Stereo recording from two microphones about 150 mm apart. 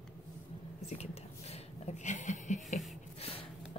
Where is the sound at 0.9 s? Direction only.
45° left (ahead or behind).